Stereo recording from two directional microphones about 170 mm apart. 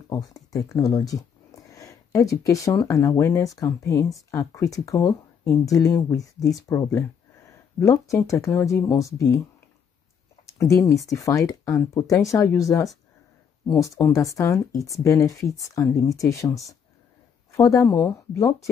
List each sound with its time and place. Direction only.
0.1 s speech: 20° left (ahead or behind)
10.4 s speech: 20° left (ahead or behind)